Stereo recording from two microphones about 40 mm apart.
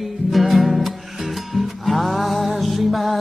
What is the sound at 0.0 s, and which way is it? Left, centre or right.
Music, centre.